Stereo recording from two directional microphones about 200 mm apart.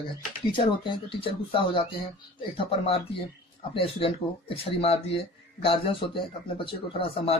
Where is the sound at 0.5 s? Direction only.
25° left (ahead or behind).